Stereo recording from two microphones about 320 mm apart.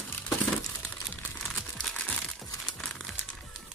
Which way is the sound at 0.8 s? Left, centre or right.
Centre.